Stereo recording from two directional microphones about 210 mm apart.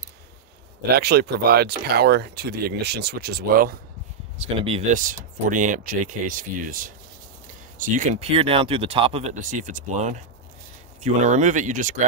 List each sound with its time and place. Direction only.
0.9 s speech: 50° right (ahead or behind)
4.4 s speech: 25° right (ahead or behind)
4.9 s speech: 40° right (ahead or behind)